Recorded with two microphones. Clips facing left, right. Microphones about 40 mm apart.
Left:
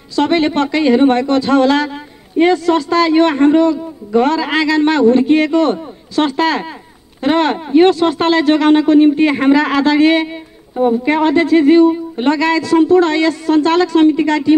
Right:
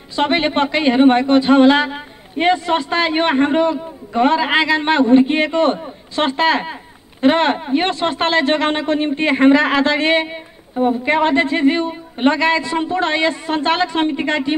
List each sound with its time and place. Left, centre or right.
0.1 s speech: right
10.8 s speech: centre